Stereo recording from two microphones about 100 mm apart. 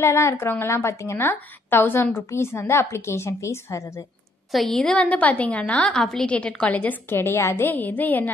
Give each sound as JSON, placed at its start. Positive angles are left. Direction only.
{"t": 0.0, "sound": "a woman's voice", "side_deg": 25}
{"t": 4.5, "sound": "a woman's voice", "side_deg": 0}